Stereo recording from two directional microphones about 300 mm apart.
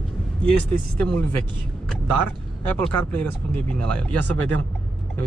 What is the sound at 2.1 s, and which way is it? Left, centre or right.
Speech, right.